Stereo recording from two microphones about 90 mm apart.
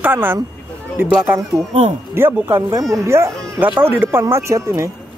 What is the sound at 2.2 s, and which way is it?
Speech, 25° right (ahead or behind).